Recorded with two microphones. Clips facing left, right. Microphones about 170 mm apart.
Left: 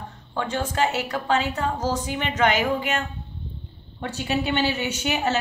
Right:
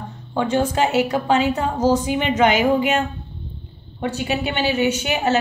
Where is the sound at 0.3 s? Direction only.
20° right (ahead or behind).